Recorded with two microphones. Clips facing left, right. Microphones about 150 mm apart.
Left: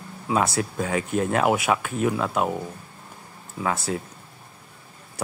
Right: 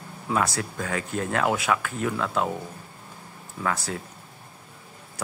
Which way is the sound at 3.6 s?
15° left (ahead or behind).